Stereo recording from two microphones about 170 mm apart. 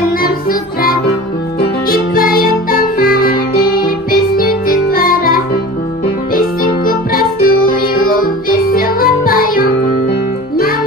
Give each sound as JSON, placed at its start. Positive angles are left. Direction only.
{"t": 0.2, "sound": "music", "side_deg": 60}